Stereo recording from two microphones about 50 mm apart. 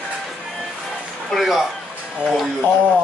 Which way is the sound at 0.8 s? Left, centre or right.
Centre.